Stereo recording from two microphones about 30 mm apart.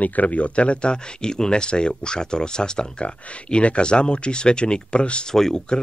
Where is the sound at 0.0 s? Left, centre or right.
Left.